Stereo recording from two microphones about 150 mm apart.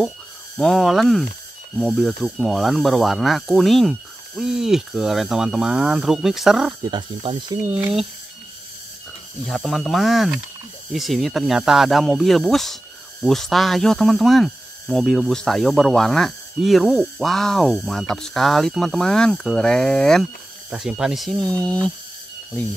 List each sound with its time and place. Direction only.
0.6 s speech: centre (ahead or behind)
6.8 s speech: 30° right (ahead or behind)
7.6 s speech: 5° right (ahead or behind)
9.5 s speech: centre (ahead or behind)